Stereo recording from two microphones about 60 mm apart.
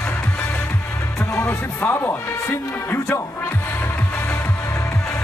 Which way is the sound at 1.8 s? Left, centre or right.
Left.